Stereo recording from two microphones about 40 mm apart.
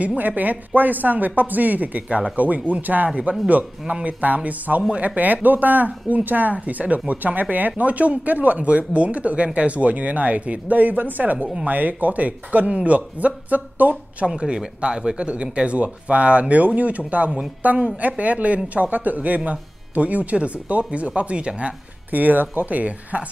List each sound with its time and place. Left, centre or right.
0.0 s speech: right
14.2 s a man's voice: right
22.1 s speech: right